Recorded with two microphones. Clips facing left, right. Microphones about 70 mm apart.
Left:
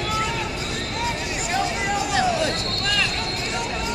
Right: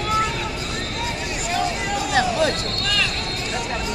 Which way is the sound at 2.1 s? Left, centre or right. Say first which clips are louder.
Right 4 dB; right.